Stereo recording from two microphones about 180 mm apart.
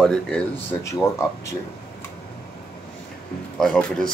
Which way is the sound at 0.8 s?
15° left (ahead or behind).